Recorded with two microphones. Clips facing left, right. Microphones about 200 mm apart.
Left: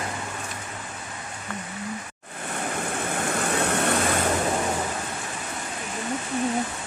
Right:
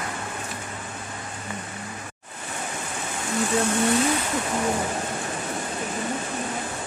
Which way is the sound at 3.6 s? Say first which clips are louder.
Right 4 dB; 60° left (ahead or behind).